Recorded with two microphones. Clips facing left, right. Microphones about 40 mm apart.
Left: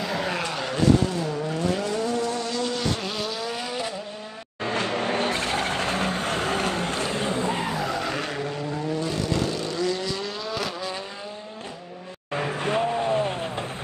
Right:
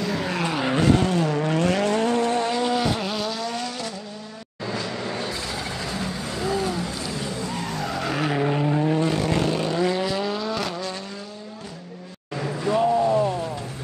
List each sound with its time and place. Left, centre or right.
0.0 s vehicle: centre
0.4 s vehicle: centre
1.4 s vehicle: right
2.6 s vehicle: centre
4.6 s vehicle: left
7.7 s vehicle: centre
8.4 s vehicle: right; by 10.9 s centre
12.4 s vehicle: left